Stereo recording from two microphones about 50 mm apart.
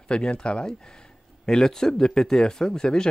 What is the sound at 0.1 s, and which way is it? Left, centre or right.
Speech, centre.